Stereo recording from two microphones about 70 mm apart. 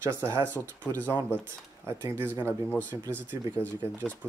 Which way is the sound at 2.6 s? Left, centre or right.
Left.